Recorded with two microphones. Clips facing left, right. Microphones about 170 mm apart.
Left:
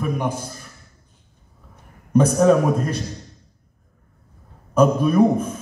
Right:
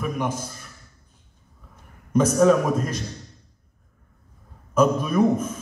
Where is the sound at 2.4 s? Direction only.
35° left (ahead or behind).